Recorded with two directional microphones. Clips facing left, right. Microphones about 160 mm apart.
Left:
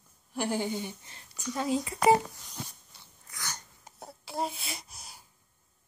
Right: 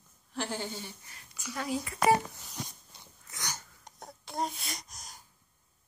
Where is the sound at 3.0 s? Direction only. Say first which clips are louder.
Right 1 dB; 20° right (ahead or behind).